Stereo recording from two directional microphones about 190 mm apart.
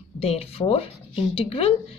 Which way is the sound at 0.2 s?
30° left (ahead or behind).